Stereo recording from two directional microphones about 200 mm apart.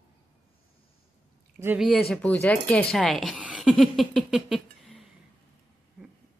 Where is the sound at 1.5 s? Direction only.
10° right (ahead or behind).